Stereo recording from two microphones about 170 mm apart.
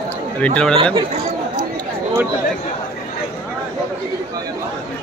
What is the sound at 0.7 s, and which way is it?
Speech, 30° right (ahead or behind).